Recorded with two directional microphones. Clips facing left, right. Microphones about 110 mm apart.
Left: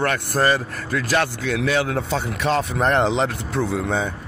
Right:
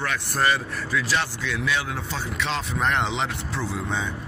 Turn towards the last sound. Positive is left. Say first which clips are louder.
# left 6 dB
turn(degrees=55)  # may be behind; listen again after turning